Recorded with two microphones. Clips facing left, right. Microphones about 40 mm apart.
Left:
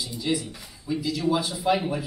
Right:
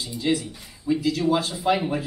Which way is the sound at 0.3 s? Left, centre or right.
Centre.